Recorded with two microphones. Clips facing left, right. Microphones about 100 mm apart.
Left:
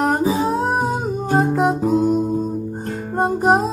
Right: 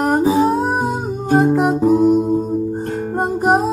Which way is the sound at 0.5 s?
Centre (ahead or behind).